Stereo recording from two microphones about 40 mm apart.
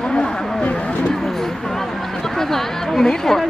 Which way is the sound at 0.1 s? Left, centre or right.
Left.